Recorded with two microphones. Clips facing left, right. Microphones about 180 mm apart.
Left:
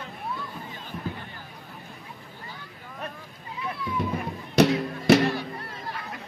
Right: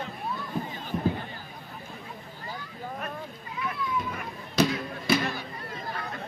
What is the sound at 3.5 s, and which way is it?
Run, 30° left (ahead or behind).